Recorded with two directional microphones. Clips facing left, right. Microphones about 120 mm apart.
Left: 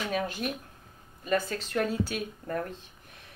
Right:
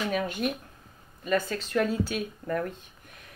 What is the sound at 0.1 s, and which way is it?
Speech, 35° left (ahead or behind).